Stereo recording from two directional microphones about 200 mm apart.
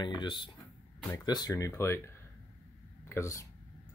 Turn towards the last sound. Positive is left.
turn(degrees=15)  # may be behind; listen again after turning